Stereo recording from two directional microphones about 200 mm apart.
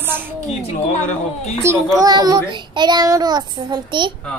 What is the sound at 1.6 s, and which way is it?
A child's voice, 20° right (ahead or behind).